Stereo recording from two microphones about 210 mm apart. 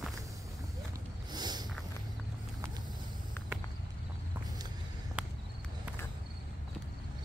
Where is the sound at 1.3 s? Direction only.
20° right (ahead or behind).